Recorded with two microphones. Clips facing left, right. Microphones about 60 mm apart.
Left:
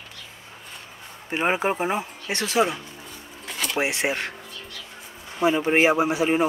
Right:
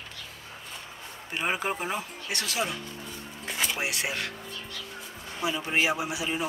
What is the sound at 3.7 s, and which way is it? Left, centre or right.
Speech, left.